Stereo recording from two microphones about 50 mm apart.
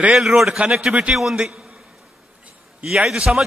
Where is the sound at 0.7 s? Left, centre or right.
Centre.